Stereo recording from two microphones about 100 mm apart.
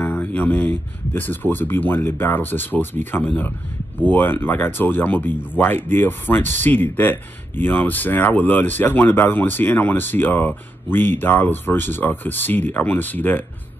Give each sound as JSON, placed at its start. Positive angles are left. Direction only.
{"t": 0.0, "sound": "speech", "side_deg": 15}